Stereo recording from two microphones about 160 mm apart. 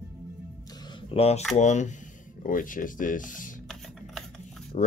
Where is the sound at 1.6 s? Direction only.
50° left (ahead or behind).